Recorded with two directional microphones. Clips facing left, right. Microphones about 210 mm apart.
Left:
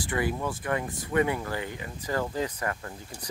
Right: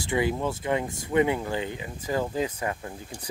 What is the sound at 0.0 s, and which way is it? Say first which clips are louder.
Speech: right 3 dB; 20° right (ahead or behind).